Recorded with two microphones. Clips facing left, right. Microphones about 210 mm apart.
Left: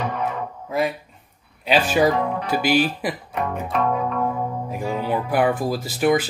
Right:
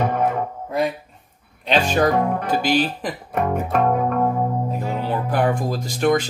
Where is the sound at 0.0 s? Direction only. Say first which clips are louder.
Right 5 dB; 50° right (ahead or behind).